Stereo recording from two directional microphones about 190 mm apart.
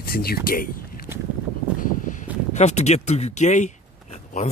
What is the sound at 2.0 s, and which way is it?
Speech, 40° left (ahead or behind).